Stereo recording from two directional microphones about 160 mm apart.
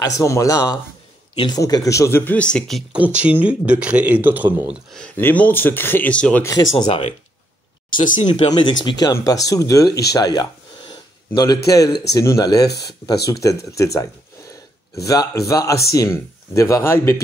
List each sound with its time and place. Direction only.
0.0 s speech: 20° left (ahead or behind)
1.3 s speech: 30° left (ahead or behind)
1.6 s speech: 20° left (ahead or behind)
2.9 s speech: 5° right (ahead or behind)
4.9 s speech: 10° left (ahead or behind)
6.4 s speech: 25° left (ahead or behind); by 8.5 s 45° left (ahead or behind)
8.5 s a man's voice: 30° left (ahead or behind)
15.0 s speech: 20° left (ahead or behind)